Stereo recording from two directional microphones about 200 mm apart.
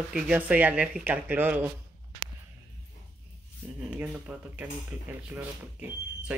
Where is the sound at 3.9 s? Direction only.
10° right (ahead or behind).